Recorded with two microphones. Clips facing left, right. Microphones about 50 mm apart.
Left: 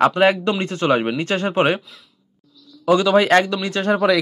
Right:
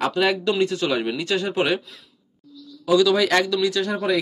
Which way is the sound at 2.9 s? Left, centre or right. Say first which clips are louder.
Left 3 dB; left.